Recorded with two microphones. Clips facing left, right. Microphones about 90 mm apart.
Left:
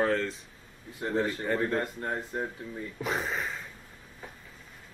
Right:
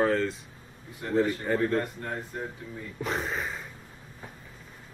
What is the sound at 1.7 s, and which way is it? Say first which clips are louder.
Speech: right 1 dB; 25° left (ahead or behind).